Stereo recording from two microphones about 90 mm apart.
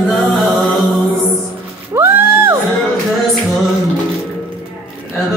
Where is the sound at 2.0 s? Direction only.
25° right (ahead or behind).